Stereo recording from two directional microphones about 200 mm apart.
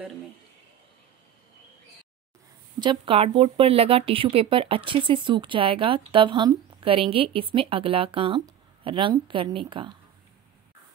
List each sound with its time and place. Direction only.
2.8 s speech: 25° right (ahead or behind)